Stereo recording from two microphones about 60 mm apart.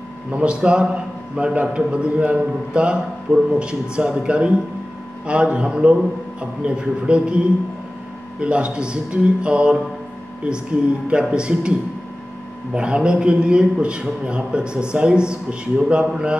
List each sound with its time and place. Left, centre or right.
0.3 s a man's voice: centre
11.3 s a man's voice: centre
12.7 s a man's voice: centre